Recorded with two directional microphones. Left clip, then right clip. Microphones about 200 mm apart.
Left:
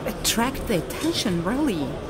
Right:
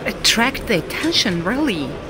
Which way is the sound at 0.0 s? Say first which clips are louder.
Right 8 dB; 5° right (ahead or behind).